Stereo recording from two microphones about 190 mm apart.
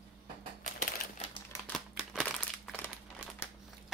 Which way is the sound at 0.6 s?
50° left (ahead or behind).